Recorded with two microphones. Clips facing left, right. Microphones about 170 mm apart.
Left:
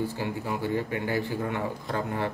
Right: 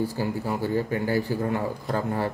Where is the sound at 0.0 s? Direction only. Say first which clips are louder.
Right 3 dB; 40° right (ahead or behind).